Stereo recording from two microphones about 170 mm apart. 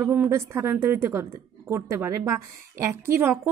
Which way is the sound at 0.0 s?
15° right (ahead or behind).